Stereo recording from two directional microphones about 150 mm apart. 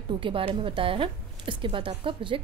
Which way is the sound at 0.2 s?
35° right (ahead or behind).